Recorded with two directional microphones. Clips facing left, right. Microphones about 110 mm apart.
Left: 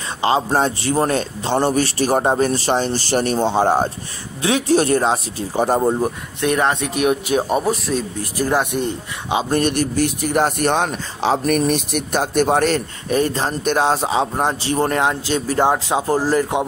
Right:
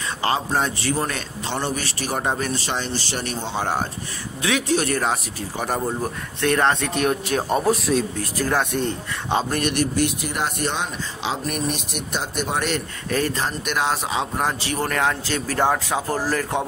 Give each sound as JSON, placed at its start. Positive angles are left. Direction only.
{"t": 0.5, "sound": "a man's voice", "side_deg": 35}
{"t": 7.6, "sound": "speech", "side_deg": 0}
{"t": 9.5, "sound": "a man's voice", "side_deg": 35}